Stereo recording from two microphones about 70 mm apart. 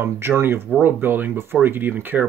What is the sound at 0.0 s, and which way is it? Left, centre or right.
Speech, right.